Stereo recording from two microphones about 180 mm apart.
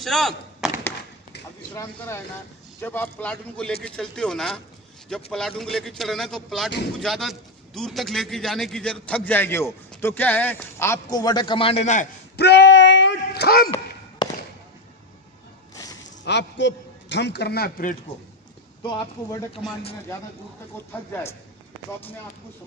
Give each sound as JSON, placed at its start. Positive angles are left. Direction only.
{"t": 0.0, "sound": "chop", "side_deg": 0}
{"t": 2.8, "sound": "a man's voice", "side_deg": 10}
{"t": 12.4, "sound": "a sound", "side_deg": 70}
{"t": 13.7, "sound": "a sound", "side_deg": 25}
{"t": 15.7, "sound": "music", "side_deg": 20}
{"t": 16.3, "sound": "a man's voice", "side_deg": 75}
{"t": 20.9, "sound": "a man's voice", "side_deg": 10}